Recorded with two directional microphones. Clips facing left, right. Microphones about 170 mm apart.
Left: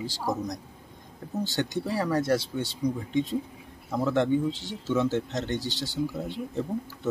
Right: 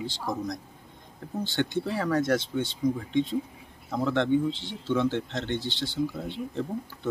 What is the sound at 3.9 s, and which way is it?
Speech, 5° left (ahead or behind).